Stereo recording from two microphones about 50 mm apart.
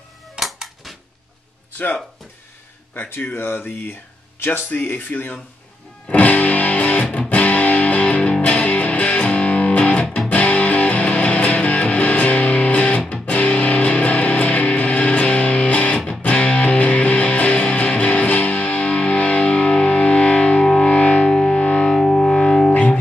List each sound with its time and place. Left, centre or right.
0.4 s music: centre
3.1 s speech: left
6.0 s music: left
21.3 s music: centre
21.9 s music: centre